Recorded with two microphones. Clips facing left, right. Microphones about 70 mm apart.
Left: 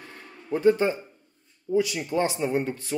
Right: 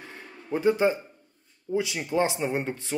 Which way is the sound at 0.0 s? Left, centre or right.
Centre.